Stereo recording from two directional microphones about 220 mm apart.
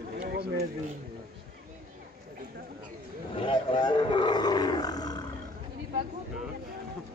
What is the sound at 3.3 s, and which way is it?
Roar, 25° left (ahead or behind).